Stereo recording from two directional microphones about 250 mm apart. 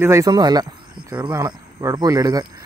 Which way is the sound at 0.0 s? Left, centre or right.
Centre.